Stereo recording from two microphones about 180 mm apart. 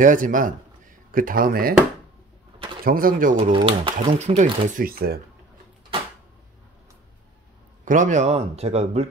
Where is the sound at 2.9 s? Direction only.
50° right (ahead or behind).